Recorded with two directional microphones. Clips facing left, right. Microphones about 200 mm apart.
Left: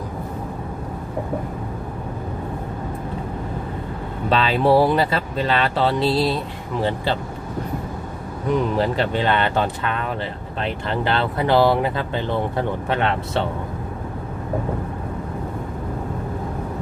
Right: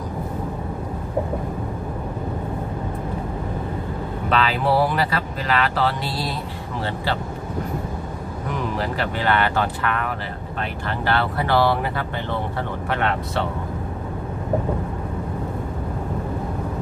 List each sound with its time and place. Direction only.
4.3 s speech: 25° left (ahead or behind)
8.7 s speech: 25° left (ahead or behind)